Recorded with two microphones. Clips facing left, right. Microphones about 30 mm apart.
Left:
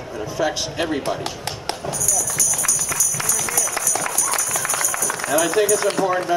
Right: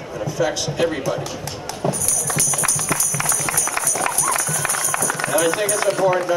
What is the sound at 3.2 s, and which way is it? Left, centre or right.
Run, right.